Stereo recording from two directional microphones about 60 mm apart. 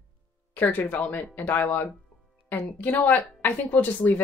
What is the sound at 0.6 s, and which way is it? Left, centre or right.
Speech, left.